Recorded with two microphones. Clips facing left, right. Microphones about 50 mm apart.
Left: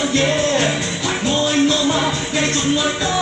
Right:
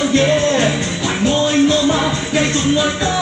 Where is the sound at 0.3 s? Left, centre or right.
Right.